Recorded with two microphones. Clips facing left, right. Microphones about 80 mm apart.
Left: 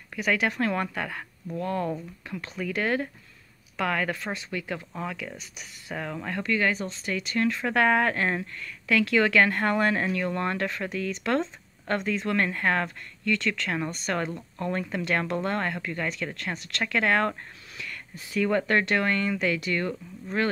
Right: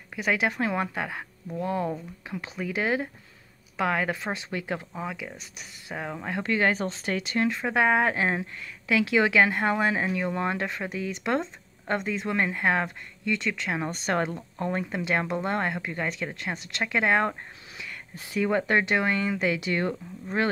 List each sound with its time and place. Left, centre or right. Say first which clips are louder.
0.3 s speech: even; centre
4.9 s speech: even; centre
6.4 s speech: right 2 dB; right
7.4 s speech: left 1 dB; centre
13.9 s speech: right 2 dB; right
14.3 s speech: right 1 dB; centre